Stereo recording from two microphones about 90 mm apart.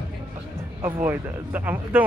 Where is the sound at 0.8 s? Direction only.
20° right (ahead or behind).